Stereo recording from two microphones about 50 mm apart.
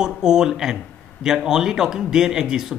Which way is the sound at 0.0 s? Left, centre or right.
Centre.